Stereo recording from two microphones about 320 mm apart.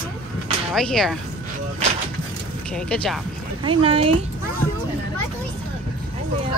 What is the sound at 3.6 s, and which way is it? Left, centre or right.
Speech, centre.